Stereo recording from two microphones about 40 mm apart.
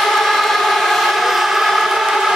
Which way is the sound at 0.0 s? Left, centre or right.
Centre.